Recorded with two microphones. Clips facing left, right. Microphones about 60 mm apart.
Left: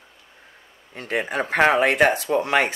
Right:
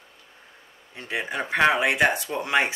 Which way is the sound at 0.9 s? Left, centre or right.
Left.